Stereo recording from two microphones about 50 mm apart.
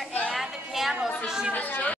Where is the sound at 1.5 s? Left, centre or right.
Left.